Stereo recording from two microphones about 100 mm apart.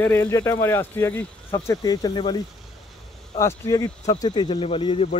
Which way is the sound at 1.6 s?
40° left (ahead or behind).